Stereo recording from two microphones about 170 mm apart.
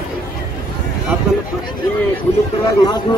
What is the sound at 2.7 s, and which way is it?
Speech, 25° left (ahead or behind).